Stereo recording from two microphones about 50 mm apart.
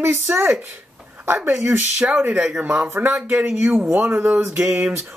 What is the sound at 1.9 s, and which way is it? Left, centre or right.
Speech, right.